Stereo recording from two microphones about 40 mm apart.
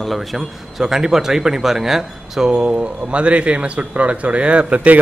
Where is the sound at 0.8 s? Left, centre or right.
Centre.